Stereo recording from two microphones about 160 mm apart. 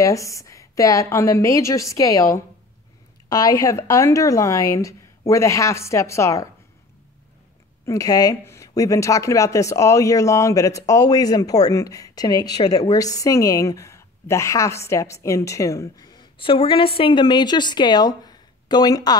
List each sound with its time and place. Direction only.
0.0 s speech: 20° left (ahead or behind)
7.8 s speech: 20° left (ahead or behind)